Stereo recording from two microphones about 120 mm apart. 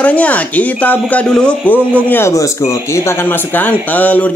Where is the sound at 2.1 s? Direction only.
25° left (ahead or behind).